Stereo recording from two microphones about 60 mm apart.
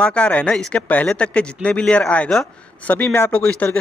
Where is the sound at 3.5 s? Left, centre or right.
Left.